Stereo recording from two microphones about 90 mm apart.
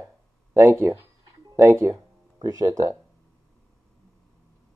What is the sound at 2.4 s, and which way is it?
Speech, 40° right (ahead or behind).